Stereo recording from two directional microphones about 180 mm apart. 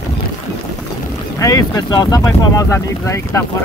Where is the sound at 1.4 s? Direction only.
20° left (ahead or behind).